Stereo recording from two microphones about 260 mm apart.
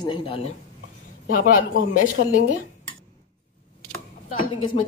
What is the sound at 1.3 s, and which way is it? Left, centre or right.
Speech, left.